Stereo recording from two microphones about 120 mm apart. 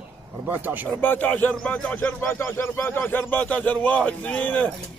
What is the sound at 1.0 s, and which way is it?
Speech, 15° left (ahead or behind).